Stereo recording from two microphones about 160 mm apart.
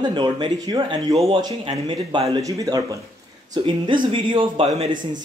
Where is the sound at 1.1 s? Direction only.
40° right (ahead or behind).